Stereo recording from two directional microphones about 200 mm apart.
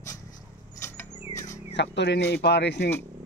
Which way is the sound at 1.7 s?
60° left (ahead or behind).